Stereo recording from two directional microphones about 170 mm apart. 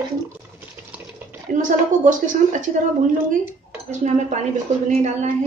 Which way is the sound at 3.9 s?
45° right (ahead or behind).